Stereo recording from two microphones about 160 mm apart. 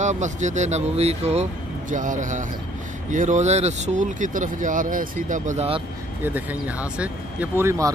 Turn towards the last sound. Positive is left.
turn(degrees=-15)  # may be behind; listen again after turning